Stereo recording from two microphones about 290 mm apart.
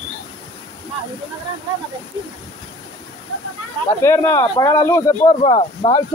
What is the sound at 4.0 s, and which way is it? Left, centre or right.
Speech, centre.